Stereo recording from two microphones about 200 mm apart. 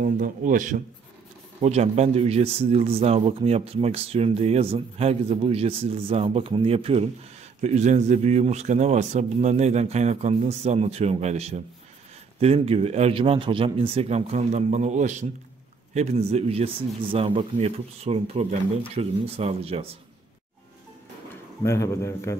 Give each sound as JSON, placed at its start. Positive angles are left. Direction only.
{"t": 0.0, "sound": "speech", "side_deg": -45}
{"t": 21.6, "sound": "a man's voice", "side_deg": 15}